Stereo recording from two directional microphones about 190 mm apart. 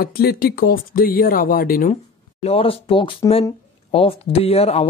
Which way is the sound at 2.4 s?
30° left (ahead or behind).